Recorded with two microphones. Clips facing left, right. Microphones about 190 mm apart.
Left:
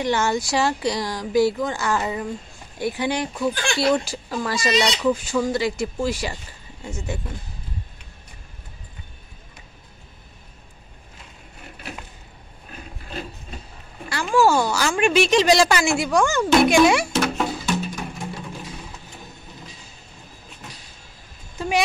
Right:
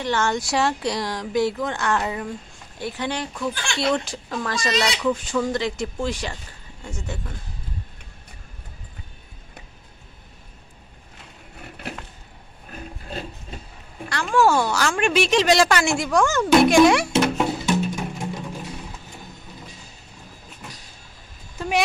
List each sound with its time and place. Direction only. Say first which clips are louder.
0.0 s speech: left 2 dB; 10° left (ahead or behind)
2.8 s speech: left 4 dB; 10° left (ahead or behind)
14.0 s a woman's voice: left 1 dB; 5° left (ahead or behind)
17.1 s music: right 2 dB; 20° right (ahead or behind)
21.5 s a sound: left 1 dB; centre (ahead or behind)